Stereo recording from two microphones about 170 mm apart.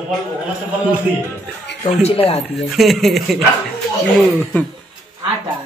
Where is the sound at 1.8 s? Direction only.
40° left (ahead or behind).